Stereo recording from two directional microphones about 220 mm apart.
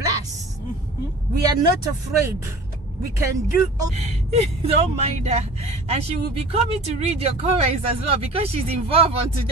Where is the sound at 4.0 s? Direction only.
30° right (ahead or behind).